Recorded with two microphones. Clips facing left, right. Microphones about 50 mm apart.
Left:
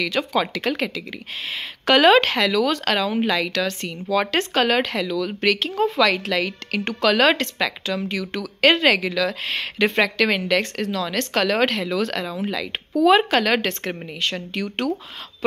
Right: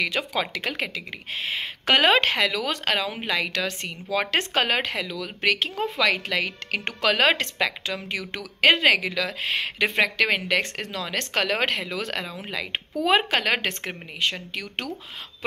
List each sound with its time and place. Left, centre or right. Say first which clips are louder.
0.0 s a woman's voice: left 4 dB; centre
0.9 s a woman's voice: left 1 dB; right
14.3 s speech: left 5 dB; centre